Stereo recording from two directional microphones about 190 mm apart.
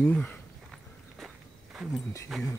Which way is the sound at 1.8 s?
Centre (ahead or behind).